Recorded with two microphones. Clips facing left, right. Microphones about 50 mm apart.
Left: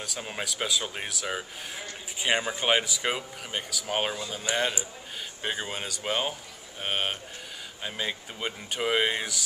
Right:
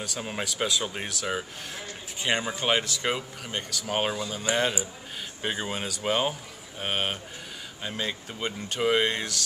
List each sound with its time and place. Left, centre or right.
0.0 s speech: centre